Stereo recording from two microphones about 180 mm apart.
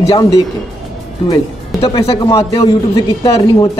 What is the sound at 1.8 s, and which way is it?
Speech, 30° left (ahead or behind).